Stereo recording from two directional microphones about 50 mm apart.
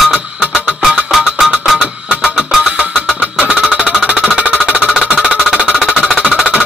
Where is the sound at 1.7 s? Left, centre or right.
Right.